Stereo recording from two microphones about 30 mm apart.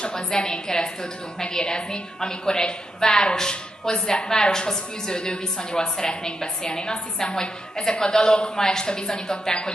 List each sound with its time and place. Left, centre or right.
0.1 s a woman's voice: left